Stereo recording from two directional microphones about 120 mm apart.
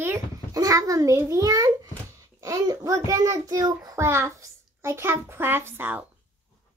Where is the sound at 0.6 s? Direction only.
30° right (ahead or behind).